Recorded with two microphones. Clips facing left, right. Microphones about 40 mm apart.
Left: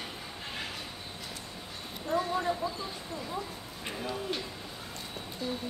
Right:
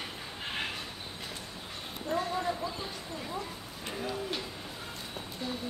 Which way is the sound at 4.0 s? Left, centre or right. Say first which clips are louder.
Even; centre.